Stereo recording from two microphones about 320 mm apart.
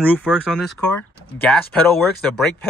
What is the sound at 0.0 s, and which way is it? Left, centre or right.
Speech, centre.